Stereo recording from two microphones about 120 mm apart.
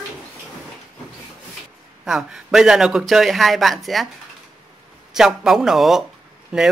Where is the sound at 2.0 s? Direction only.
5° right (ahead or behind).